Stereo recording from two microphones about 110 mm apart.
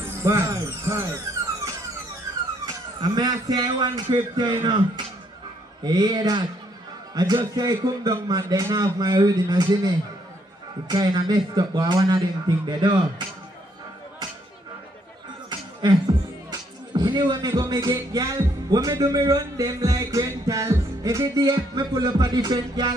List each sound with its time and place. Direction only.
0.2 s speech: 25° right (ahead or behind); by 13.0 s 45° right (ahead or behind)
15.8 s speech: 35° right (ahead or behind)